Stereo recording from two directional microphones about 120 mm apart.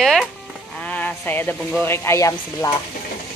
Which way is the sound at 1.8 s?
20° left (ahead or behind).